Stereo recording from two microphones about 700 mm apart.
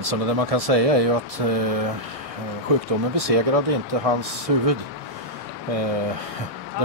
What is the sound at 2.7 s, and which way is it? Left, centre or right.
Speech, right.